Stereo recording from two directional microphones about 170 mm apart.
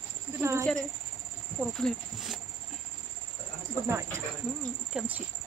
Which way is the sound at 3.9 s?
15° right (ahead or behind).